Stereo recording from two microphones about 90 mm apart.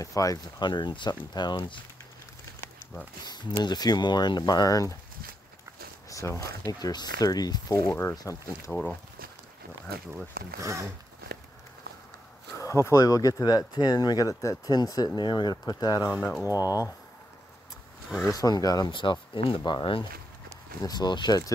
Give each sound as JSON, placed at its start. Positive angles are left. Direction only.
{"t": 0.0, "sound": "speech", "side_deg": 40}
{"t": 0.6, "sound": "speech", "side_deg": 60}
{"t": 3.3, "sound": "speech", "side_deg": 50}
{"t": 6.0, "sound": "speech", "side_deg": 35}
{"t": 6.7, "sound": "speech", "side_deg": 50}
{"t": 7.9, "sound": "speech", "side_deg": 30}
{"t": 10.1, "sound": "speech", "side_deg": -35}
{"t": 12.5, "sound": "speech", "side_deg": 35}
{"t": 16.0, "sound": "speech", "side_deg": -15}
{"t": 16.4, "sound": "speech", "side_deg": -25}
{"t": 18.2, "sound": "speech", "side_deg": 45}
{"t": 18.9, "sound": "speech", "side_deg": 65}